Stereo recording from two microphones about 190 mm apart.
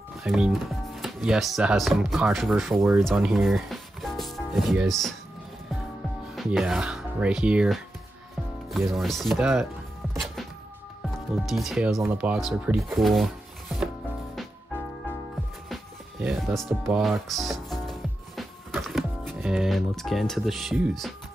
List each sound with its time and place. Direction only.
0.2 s speech: centre (ahead or behind)
6.3 s speech: centre (ahead or behind)
11.3 s speech: centre (ahead or behind)
15.7 s music: centre (ahead or behind)